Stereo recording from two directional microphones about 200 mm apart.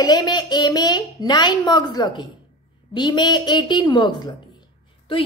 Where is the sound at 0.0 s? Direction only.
20° left (ahead or behind).